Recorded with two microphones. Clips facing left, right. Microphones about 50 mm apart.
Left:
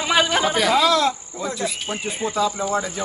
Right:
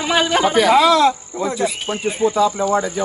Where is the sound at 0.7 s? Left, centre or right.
Right.